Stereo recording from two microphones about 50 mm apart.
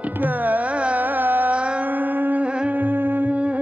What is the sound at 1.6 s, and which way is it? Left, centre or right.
Carnatic music, right.